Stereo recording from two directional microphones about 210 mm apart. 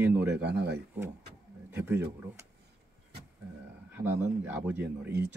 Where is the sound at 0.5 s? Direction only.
55° right (ahead or behind).